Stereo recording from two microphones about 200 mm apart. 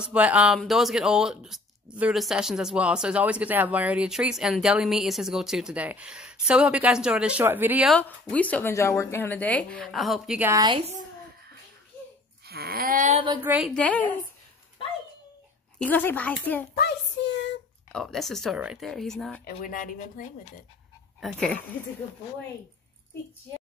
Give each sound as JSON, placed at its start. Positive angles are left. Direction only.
{"t": 0.0, "sound": "speech", "side_deg": -5}
{"t": 8.0, "sound": "speech", "side_deg": 5}
{"t": 10.5, "sound": "a woman's voice", "side_deg": -20}
{"t": 12.4, "sound": "a sound", "side_deg": -50}
{"t": 13.2, "sound": "a woman's voice", "side_deg": -20}
{"t": 13.5, "sound": "speech", "side_deg": 0}
{"t": 15.8, "sound": "speech", "side_deg": 10}
{"t": 16.7, "sound": "a sound", "side_deg": 60}
{"t": 17.9, "sound": "speech", "side_deg": 0}
{"t": 19.4, "sound": "speech", "side_deg": 45}
{"t": 21.2, "sound": "speech", "side_deg": 0}